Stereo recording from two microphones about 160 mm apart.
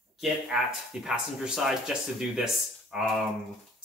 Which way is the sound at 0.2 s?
5° right (ahead or behind).